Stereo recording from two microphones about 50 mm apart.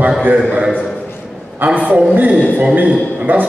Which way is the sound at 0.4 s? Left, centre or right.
Right.